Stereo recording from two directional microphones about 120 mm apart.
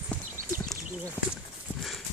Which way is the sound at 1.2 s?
20° left (ahead or behind).